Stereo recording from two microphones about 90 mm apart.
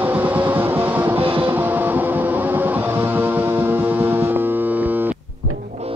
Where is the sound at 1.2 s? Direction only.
80° right.